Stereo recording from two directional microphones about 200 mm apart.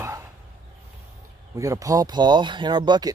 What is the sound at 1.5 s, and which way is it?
Speech, 15° right (ahead or behind).